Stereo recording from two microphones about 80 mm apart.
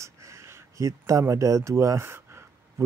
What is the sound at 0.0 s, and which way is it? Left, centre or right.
A man's voice, right.